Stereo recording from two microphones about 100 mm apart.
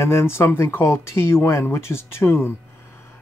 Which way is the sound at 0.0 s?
25° left (ahead or behind).